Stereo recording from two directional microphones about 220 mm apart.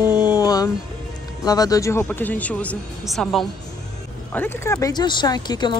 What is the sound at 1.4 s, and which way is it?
A woman's voice, 15° left (ahead or behind).